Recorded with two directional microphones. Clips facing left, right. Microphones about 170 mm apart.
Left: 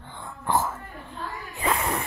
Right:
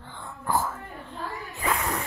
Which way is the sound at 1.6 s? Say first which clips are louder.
Left 2 dB; 25° left (ahead or behind).